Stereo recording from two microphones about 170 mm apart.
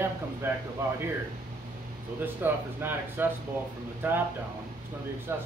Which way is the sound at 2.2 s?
10° right (ahead or behind).